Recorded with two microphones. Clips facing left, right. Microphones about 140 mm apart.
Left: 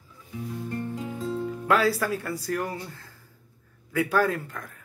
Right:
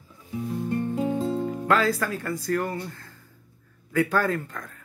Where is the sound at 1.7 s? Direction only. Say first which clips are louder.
Left 1 dB; 10° left (ahead or behind).